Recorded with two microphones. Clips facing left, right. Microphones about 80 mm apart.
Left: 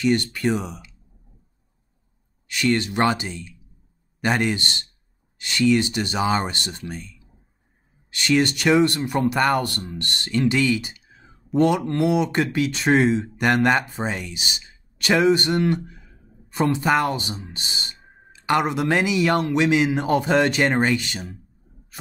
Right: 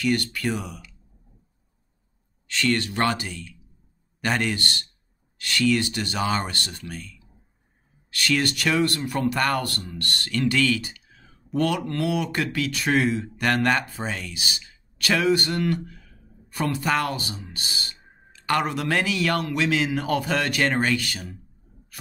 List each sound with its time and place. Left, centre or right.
0.0 s speech: left
2.4 s speech: centre